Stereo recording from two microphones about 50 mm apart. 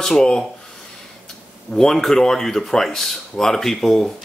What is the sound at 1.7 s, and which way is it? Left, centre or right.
A man's voice, centre.